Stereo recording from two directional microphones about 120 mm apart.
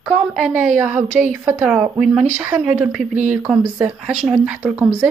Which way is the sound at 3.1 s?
90° right.